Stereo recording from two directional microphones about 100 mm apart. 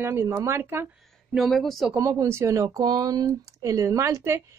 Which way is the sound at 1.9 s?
30° right (ahead or behind).